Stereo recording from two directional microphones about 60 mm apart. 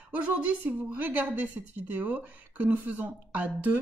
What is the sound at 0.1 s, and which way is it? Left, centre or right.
Speech, right.